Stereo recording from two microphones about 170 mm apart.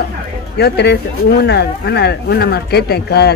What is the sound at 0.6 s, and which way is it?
Speech, 75° left (ahead or behind).